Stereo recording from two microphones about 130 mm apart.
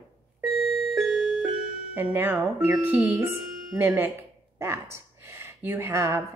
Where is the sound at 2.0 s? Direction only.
15° right (ahead or behind).